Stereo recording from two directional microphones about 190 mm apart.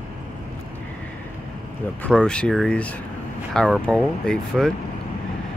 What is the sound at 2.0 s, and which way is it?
Speech, 5° left (ahead or behind).